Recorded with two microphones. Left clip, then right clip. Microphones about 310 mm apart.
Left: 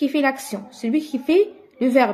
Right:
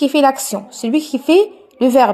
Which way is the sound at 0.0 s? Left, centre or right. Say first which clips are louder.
Right 8 dB; centre.